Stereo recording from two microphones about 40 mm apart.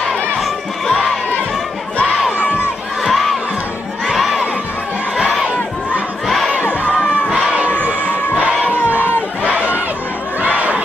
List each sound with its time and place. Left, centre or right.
0.1 s crowd: centre
2.3 s crowd: left
3.0 s crowd: centre
8.7 s crowd: right
9.4 s run: right
10.4 s a sound: right